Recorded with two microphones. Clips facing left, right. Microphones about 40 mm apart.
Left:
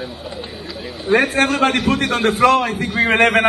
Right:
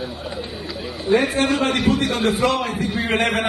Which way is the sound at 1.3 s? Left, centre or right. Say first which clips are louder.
Left 3 dB; left.